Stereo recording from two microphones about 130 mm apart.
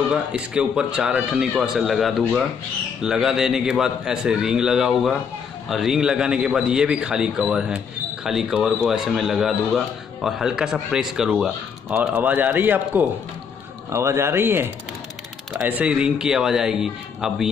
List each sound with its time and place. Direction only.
0.1 s a man's voice: 5° right (ahead or behind)